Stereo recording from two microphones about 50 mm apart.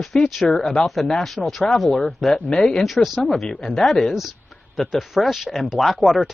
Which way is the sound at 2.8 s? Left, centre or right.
Centre.